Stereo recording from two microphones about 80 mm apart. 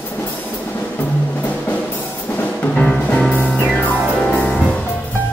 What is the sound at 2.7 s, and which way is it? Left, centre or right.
Music, centre.